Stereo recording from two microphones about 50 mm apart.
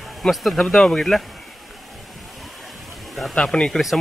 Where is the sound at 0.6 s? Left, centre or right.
Centre.